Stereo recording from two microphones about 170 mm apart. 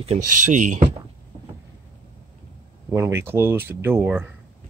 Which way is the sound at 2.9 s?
15° right (ahead or behind).